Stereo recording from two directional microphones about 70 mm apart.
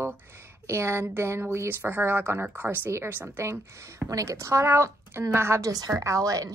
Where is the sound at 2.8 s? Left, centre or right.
Right.